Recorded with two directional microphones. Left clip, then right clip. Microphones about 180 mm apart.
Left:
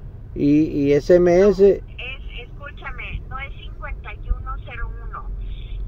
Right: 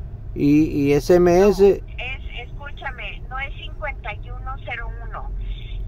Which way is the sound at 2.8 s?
15° right (ahead or behind).